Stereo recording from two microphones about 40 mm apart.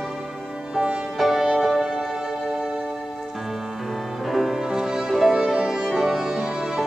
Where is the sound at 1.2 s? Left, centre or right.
Centre.